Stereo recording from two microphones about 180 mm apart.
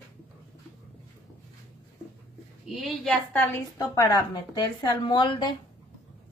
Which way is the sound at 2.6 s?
Centre (ahead or behind).